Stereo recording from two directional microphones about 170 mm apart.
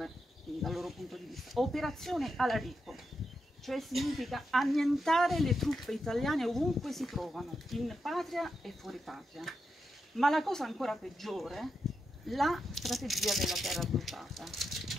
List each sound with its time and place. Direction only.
0.6 s speech: centre (ahead or behind)